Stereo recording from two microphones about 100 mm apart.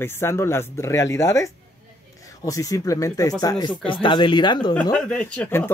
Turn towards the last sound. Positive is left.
turn(degrees=10)  # may be behind; listen again after turning